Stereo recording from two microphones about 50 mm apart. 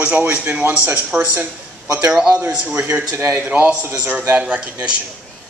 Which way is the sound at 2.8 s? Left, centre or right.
Right.